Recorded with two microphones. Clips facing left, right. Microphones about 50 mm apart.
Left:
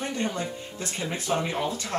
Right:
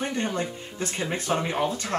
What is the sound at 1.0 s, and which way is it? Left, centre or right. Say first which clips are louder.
Speech: right 1 dB; right.